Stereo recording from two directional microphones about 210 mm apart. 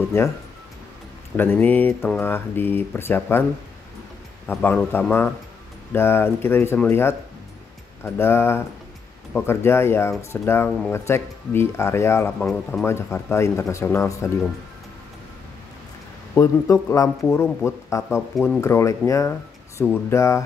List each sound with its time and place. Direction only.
1.3 s speech: 10° left (ahead or behind)
4.5 s speech: 5° left (ahead or behind)
16.3 s speech: 15° left (ahead or behind)